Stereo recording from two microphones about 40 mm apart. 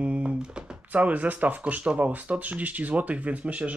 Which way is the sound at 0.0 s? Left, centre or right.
Right.